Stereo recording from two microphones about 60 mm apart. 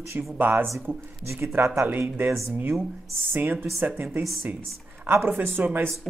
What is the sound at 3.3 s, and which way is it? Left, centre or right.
A woman's voice, right.